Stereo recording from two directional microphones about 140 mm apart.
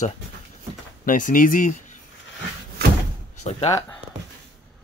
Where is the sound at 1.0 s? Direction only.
75° left (ahead or behind).